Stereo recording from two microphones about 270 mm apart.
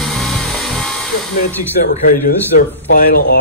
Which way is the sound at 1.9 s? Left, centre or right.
Left.